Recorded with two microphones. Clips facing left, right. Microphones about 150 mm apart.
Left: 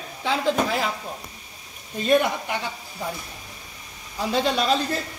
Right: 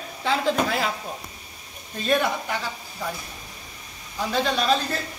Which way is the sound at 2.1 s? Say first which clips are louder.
Left 3 dB; 15° left (ahead or behind).